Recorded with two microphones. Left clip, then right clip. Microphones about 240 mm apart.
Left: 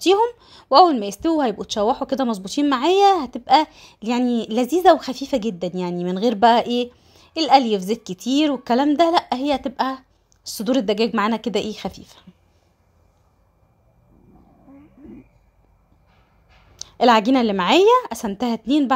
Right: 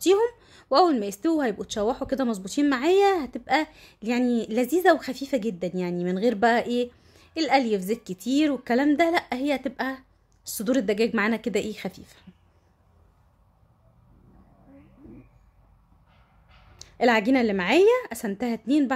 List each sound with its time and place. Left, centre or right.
0.0 s a woman's voice: centre
16.8 s a woman's voice: centre